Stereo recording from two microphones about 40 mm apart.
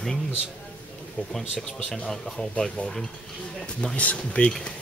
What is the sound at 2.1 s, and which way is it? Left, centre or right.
Speech, centre.